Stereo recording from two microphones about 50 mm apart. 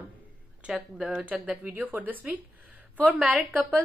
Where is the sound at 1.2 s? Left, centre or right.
Right.